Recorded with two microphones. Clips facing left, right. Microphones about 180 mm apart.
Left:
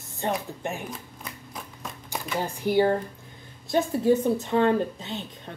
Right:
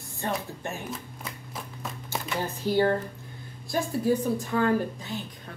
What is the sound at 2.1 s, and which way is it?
Speech, 15° left (ahead or behind).